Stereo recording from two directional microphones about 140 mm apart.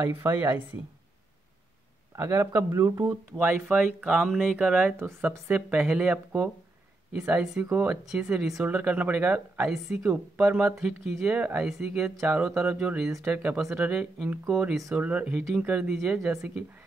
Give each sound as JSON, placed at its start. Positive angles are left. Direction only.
{"t": 0.1, "sound": "speech", "side_deg": -15}
{"t": 2.1, "sound": "speech", "side_deg": -20}
{"t": 3.4, "sound": "speech", "side_deg": -10}